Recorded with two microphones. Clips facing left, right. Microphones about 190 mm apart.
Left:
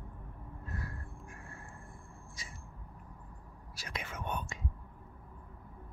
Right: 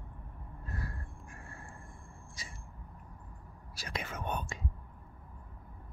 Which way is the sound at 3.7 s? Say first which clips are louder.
Right 3 dB; 35° right (ahead or behind).